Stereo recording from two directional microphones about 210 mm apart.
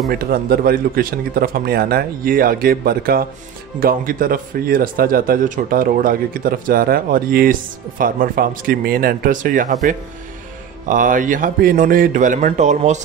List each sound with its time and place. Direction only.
0.1 s speech: 45° right (ahead or behind)